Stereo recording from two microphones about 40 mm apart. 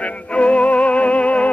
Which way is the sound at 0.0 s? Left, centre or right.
Left.